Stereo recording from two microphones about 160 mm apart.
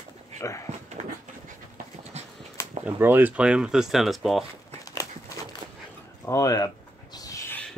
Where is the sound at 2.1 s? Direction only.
45° right (ahead or behind).